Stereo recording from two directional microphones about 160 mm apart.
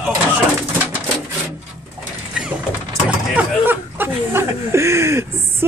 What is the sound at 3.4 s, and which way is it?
Speech, 10° right (ahead or behind).